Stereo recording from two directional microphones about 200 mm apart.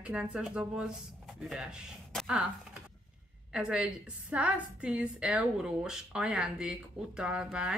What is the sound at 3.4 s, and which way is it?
Speech, 5° right (ahead or behind).